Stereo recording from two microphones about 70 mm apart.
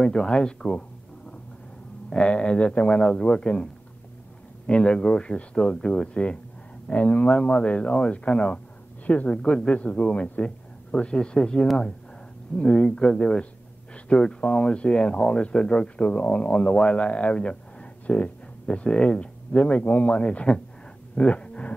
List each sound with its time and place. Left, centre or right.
0.0 s speech: centre
2.0 s speech: centre
4.6 s speech: centre
21.1 s a sound: centre